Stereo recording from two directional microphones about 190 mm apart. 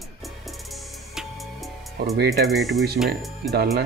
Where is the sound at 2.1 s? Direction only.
55° right (ahead or behind).